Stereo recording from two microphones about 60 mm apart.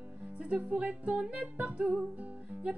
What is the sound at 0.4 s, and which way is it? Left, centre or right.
Music, right.